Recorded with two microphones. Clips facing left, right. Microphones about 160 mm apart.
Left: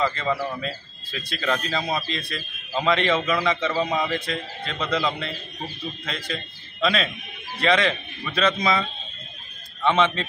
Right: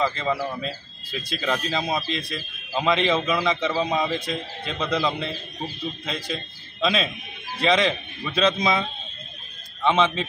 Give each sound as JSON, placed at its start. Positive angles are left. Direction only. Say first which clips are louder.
{"t": 0.0, "sound": "a man's voice", "louder": "even", "side_deg": -10}
{"t": 9.8, "sound": "a man's voice", "louder": "even", "side_deg": -10}